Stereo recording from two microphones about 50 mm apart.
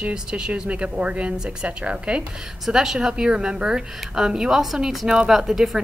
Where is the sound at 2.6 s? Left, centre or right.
Centre.